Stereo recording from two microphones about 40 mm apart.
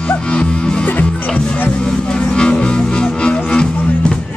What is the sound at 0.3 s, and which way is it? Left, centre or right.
Music, left.